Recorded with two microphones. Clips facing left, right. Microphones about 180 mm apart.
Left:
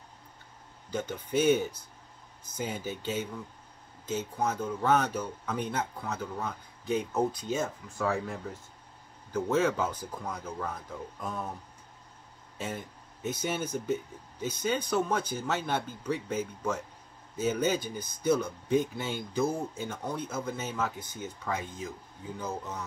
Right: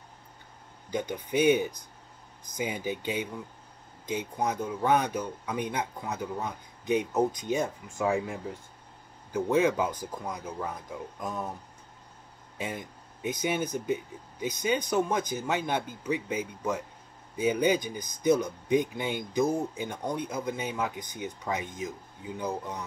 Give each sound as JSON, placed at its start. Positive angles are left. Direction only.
{"t": 0.8, "sound": "speech", "side_deg": -15}
{"t": 12.5, "sound": "speech", "side_deg": -10}